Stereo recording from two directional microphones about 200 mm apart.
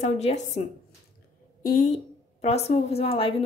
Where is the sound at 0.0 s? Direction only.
30° left (ahead or behind).